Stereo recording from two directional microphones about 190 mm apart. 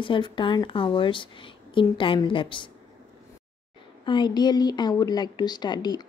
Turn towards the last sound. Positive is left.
turn(degrees=25)  # may be behind; listen again after turning